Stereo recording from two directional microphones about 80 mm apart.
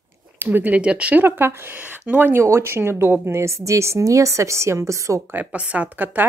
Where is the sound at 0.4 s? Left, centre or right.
Right.